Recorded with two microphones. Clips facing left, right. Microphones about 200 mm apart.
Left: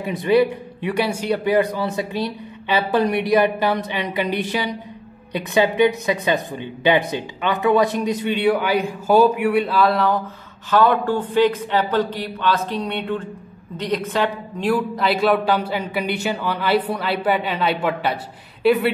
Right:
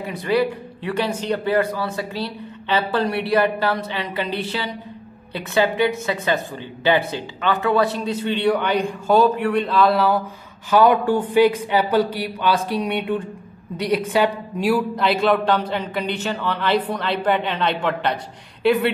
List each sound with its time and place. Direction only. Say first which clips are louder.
0.0 s speech: left 3 dB; 20° left (ahead or behind); by 18.9 s centre (ahead or behind)